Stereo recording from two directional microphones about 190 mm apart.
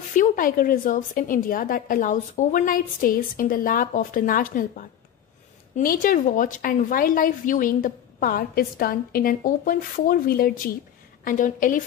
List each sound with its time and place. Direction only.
0.1 s a woman's voice: 45° left (ahead or behind)